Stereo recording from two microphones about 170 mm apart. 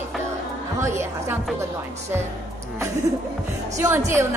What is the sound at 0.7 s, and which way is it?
Speech, 15° right (ahead or behind).